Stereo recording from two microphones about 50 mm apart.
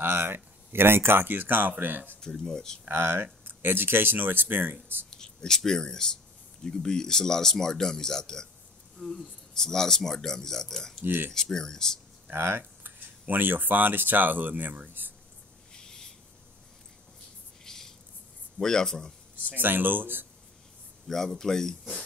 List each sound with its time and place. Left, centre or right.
0.0 s speech: right
2.1 s speech: centre
2.9 s speech: right
5.1 s speech: centre
11.0 s speech: right
11.3 s speech: centre
12.3 s a sound: right
13.3 s speech: right
15.7 s a sound: centre
17.6 s a sound: centre
18.6 s speech: centre
19.5 s speech: right
21.1 s speech: centre